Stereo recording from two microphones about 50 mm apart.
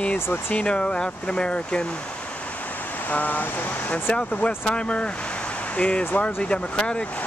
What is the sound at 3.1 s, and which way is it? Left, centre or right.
Speech, left.